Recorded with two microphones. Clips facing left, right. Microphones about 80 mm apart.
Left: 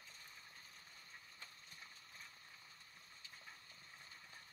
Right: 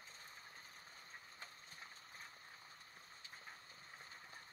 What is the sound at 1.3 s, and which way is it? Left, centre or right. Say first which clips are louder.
Clip-clop: right 3 dB; right.